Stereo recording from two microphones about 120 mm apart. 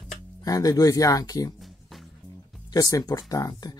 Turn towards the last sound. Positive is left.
turn(degrees=30)  # may be behind; listen again after turning